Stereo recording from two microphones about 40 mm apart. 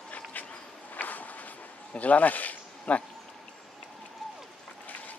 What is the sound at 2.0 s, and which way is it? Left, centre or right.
Speech, left.